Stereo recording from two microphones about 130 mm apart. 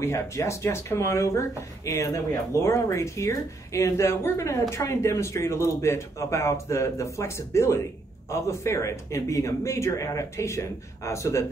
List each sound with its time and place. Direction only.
0.0 s speech: 20° left (ahead or behind)